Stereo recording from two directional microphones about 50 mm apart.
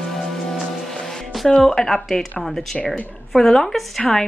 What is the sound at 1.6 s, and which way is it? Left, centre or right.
Speech, centre.